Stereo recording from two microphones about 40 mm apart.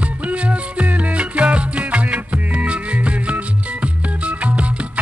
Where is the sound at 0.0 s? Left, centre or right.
Right.